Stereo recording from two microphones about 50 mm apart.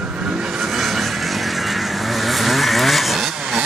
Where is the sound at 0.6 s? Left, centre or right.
Centre.